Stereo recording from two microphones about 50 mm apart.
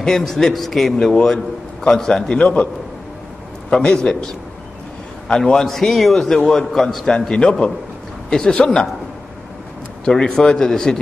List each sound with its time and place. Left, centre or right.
0.0 s a man's voice: centre
2.3 s a man's voice: left
3.7 s a man's voice: centre
10.0 s a man's voice: centre